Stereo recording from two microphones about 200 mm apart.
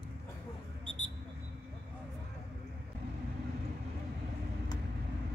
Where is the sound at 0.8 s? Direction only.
25° right (ahead or behind).